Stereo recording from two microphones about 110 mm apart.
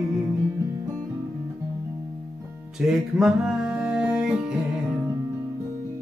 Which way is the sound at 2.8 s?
5° right (ahead or behind).